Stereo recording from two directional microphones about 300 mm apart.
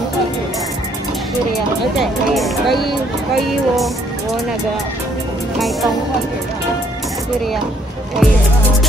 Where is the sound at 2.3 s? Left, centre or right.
Centre.